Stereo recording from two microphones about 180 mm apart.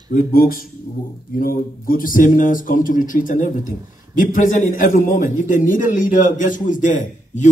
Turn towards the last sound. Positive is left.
turn(degrees=45)  # may be behind; listen again after turning